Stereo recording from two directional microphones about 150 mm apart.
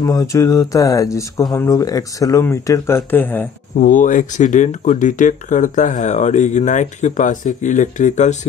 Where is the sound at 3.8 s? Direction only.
60° left (ahead or behind).